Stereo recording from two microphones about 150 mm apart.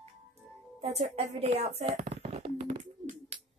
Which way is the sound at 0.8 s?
45° right (ahead or behind).